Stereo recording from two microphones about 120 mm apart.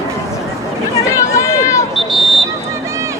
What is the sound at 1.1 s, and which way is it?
Run, 25° left (ahead or behind).